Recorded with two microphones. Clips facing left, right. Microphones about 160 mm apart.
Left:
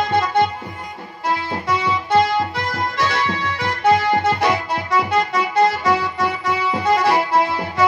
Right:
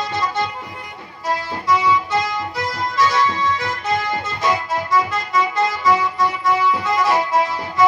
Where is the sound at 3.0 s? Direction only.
65° left (ahead or behind).